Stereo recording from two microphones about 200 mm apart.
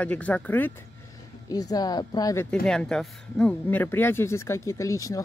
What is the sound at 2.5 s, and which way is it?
Speech, 5° left (ahead or behind).